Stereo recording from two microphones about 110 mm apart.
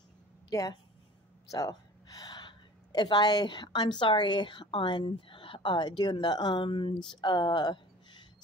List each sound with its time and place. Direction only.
0.5 s speech: 35° left (ahead or behind)
1.5 s a sound: 35° left (ahead or behind)
4.0 s speech: 45° left (ahead or behind)